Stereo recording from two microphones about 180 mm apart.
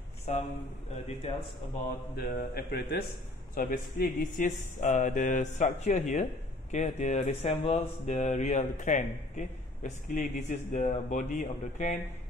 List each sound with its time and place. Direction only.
0.3 s speech: 40° left (ahead or behind)
2.1 s a man's voice: 60° left (ahead or behind)